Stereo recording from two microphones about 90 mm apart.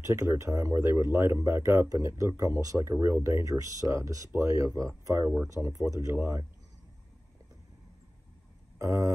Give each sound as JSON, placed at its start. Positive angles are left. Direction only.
{"t": 0.0, "sound": "speech", "side_deg": -35}
{"t": 8.7, "sound": "speech", "side_deg": -35}